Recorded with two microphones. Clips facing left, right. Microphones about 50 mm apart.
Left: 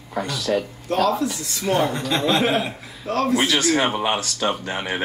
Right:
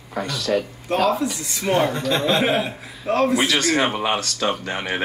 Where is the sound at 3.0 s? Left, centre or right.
Centre.